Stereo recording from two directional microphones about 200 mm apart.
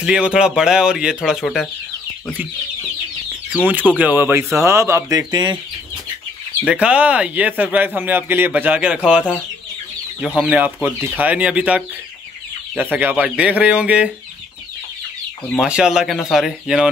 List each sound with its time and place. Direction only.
0.0 s speech: 5° right (ahead or behind)
3.5 s speech: 10° right (ahead or behind)
6.7 s speech: 5° right (ahead or behind)
10.2 s speech: 5° right (ahead or behind)
15.6 s speech: 5° right (ahead or behind)